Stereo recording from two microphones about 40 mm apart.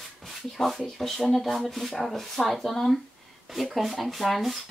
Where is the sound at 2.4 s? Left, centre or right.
Left.